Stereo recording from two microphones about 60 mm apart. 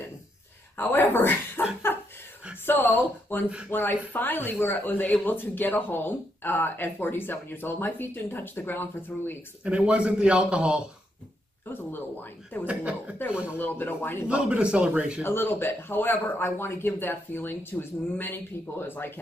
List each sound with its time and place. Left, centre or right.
0.7 s speech: left
1.9 s chuckle: left
2.6 s speech: left
3.4 s speech: centre
3.7 s speech: left
9.6 s speech: centre
11.7 s speech: left
12.6 s speech: right
13.6 s speech: left
14.2 s speech: centre
15.2 s speech: left